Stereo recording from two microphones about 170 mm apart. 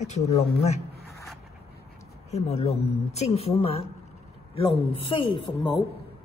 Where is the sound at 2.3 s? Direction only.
40° left (ahead or behind).